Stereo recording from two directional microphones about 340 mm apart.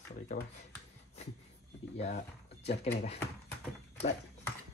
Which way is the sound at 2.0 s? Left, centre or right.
Centre.